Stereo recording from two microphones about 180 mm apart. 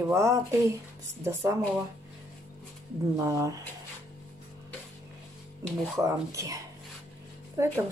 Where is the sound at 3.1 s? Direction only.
20° right (ahead or behind).